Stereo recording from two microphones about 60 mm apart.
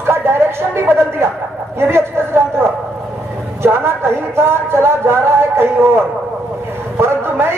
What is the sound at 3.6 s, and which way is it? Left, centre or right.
Speech, right.